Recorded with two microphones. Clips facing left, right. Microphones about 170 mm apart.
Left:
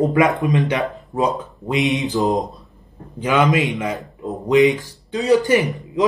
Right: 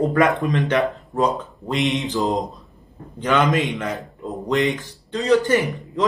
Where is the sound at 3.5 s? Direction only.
Centre (ahead or behind).